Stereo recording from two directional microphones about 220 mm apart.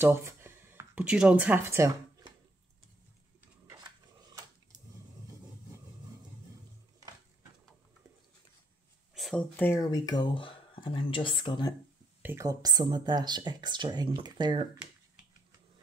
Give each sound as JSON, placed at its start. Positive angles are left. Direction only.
{"t": 0.0, "sound": "speech", "side_deg": -10}
{"t": 9.1, "sound": "speech", "side_deg": 0}
{"t": 12.2, "sound": "speech", "side_deg": -10}